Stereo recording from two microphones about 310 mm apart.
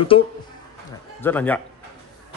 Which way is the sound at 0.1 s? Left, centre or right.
Centre.